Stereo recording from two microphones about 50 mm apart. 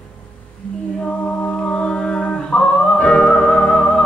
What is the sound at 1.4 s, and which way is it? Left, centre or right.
Music, left.